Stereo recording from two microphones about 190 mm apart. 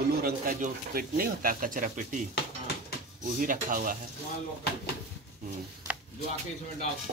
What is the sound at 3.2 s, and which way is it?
Speech, 45° right (ahead or behind).